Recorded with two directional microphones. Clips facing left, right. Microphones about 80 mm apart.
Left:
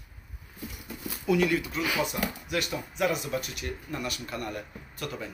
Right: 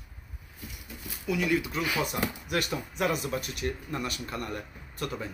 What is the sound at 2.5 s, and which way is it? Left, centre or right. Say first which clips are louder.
Speech: right 1 dB; right.